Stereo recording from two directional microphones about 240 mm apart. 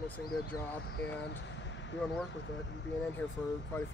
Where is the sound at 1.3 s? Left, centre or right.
Left.